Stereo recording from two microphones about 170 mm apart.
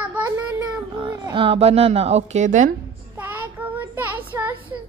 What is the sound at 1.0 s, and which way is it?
A woman's voice, 25° right (ahead or behind).